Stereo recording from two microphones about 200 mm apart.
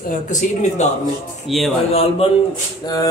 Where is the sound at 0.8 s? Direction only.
35° left (ahead or behind).